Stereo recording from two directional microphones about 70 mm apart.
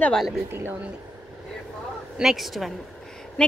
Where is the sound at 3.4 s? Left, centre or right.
Centre.